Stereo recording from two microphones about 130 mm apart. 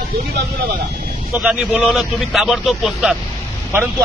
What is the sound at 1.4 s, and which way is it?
Speech, 5° right (ahead or behind).